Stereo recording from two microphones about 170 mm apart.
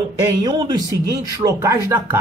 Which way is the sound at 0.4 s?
25° right (ahead or behind).